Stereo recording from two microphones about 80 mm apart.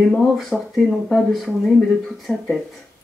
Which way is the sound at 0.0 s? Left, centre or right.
Centre.